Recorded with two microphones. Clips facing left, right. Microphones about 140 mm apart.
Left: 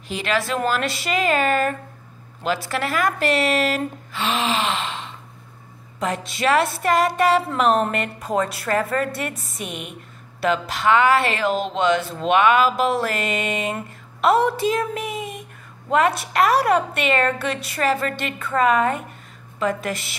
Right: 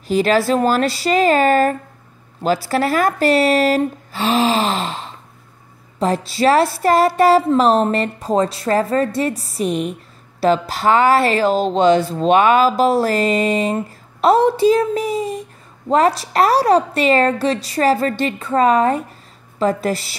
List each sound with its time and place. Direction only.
0.1 s a woman's voice: 35° right (ahead or behind)